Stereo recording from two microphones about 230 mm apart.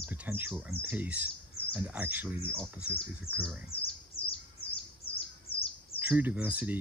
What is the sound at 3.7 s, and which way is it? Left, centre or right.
Speech, left.